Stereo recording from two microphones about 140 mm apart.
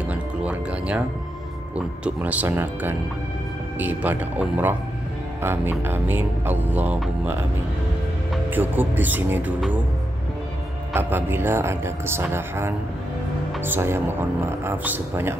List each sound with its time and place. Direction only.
0.1 s music: 10° right (ahead or behind)
8.5 s music: 15° right (ahead or behind)
10.9 s music: 15° right (ahead or behind)